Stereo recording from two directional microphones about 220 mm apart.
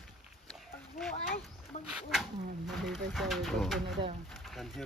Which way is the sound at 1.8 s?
5° right (ahead or behind).